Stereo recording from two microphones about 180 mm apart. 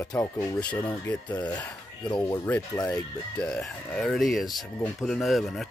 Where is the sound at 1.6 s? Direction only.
5° left (ahead or behind).